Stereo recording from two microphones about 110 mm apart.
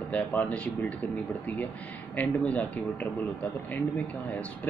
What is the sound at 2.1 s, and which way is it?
Speech, 15° left (ahead or behind).